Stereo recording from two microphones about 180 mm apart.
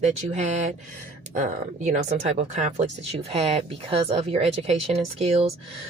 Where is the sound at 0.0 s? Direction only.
40° right (ahead or behind).